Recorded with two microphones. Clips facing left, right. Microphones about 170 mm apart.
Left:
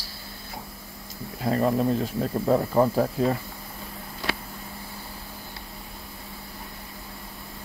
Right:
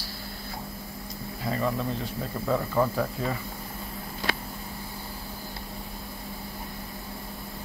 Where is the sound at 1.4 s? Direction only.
55° left (ahead or behind).